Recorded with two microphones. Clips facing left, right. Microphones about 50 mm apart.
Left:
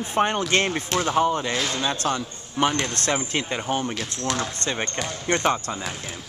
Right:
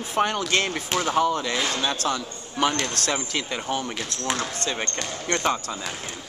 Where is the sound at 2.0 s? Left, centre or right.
Left.